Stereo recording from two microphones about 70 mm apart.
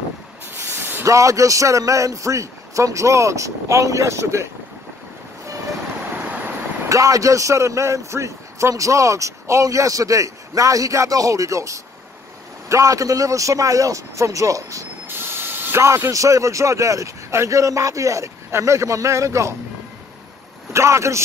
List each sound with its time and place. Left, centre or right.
0.6 s spray: right
1.0 s a man's voice: right
6.1 s vehicle: right
6.9 s a man's voice: right
15.0 s mechanisms: right
15.8 s a man's voice: right
20.7 s a man's voice: right